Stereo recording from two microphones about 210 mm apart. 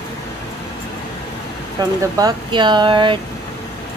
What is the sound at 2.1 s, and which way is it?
Speech, 20° right (ahead or behind).